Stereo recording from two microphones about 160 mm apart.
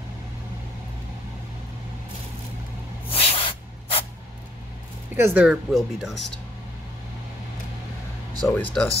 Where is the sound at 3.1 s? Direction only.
40° left (ahead or behind).